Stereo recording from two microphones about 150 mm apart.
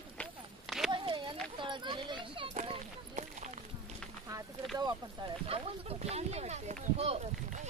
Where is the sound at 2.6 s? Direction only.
45° right (ahead or behind).